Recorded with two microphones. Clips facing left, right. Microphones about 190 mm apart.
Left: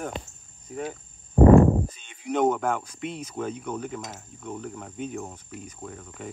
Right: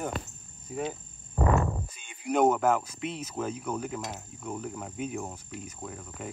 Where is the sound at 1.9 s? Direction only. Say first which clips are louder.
Even; 10° right (ahead or behind).